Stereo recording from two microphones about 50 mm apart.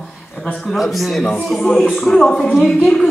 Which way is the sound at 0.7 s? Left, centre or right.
Centre.